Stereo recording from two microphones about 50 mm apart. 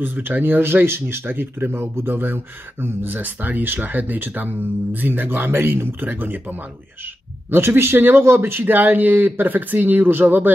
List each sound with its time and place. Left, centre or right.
0.0 s speech: right
7.5 s speech: right